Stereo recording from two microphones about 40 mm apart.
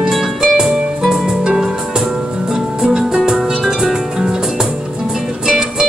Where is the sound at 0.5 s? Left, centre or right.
Centre.